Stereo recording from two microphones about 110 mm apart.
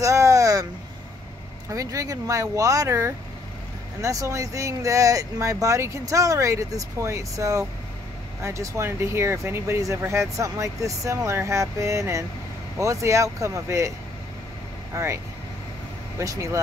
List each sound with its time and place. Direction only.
0.0 s vehicle: 30° right (ahead or behind)
1.7 s speech: 30° right (ahead or behind)
14.9 s speech: 25° right (ahead or behind)
16.2 s speech: 30° right (ahead or behind)